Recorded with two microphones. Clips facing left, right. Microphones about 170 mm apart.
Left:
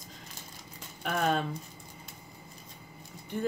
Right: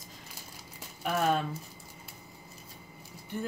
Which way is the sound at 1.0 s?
5° right (ahead or behind).